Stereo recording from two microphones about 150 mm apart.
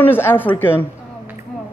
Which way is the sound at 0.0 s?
15° left (ahead or behind).